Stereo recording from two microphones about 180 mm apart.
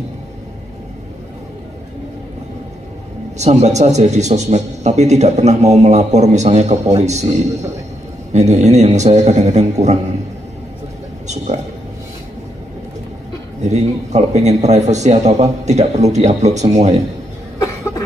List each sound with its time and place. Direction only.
3.3 s a man's voice: 40° right (ahead or behind)
11.2 s speech: 40° right (ahead or behind)
13.7 s a man's voice: 40° right (ahead or behind)